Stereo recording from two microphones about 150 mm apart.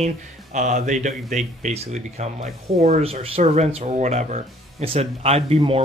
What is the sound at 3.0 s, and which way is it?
Speech, 40° right (ahead or behind).